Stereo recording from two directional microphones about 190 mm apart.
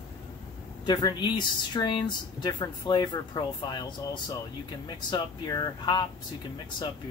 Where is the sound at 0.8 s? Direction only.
20° left (ahead or behind).